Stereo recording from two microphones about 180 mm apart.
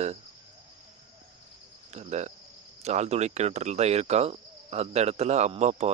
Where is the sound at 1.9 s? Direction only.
40° right (ahead or behind).